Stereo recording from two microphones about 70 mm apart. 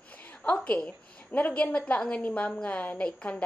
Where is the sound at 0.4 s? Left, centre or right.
Centre.